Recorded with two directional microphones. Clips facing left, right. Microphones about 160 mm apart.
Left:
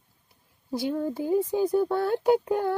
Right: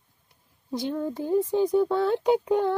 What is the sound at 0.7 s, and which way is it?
Speech, 5° left (ahead or behind).